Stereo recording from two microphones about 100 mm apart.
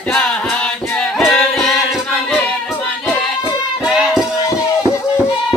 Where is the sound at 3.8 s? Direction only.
5° right (ahead or behind).